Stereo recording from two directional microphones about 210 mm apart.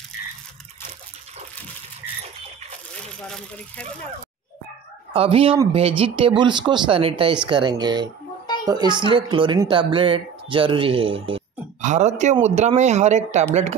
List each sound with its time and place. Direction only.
3.3 s speech: 5° left (ahead or behind)
5.1 s speech: 25° right (ahead or behind)